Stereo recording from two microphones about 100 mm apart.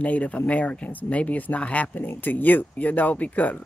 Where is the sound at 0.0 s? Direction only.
15° left (ahead or behind).